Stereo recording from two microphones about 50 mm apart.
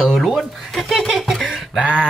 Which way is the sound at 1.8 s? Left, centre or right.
Centre.